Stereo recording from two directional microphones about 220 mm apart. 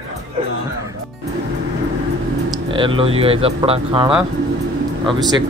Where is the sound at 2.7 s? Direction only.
25° right (ahead or behind).